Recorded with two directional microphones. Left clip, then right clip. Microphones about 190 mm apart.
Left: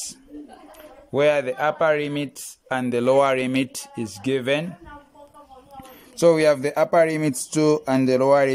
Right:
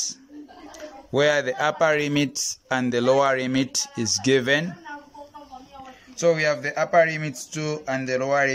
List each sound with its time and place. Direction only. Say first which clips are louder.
1.1 s speech: left 1 dB; 5° left (ahead or behind)
6.1 s speech: left 4 dB; 25° left (ahead or behind)